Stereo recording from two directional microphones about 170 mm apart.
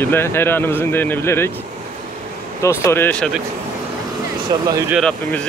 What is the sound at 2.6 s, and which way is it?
Speech, 15° left (ahead or behind).